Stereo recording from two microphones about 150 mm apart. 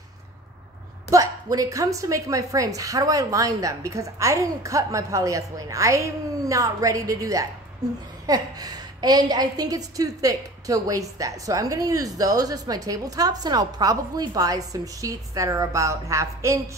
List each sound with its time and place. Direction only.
1.1 s a woman's voice: 25° right (ahead or behind)